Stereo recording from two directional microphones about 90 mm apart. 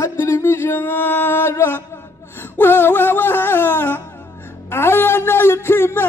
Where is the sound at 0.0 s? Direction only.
30° left (ahead or behind).